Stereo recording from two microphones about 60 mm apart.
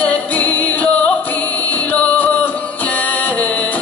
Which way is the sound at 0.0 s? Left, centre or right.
Left.